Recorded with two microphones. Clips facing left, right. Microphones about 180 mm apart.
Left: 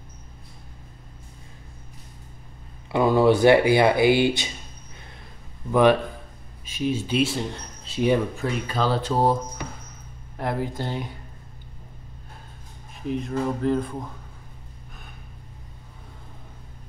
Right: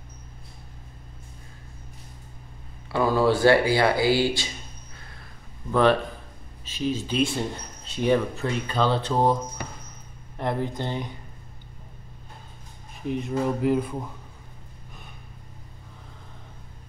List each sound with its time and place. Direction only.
2.9 s speech: 20° left (ahead or behind)
5.7 s speech: 15° left (ahead or behind)
13.0 s speech: centre (ahead or behind)
13.3 s a sound: 10° right (ahead or behind)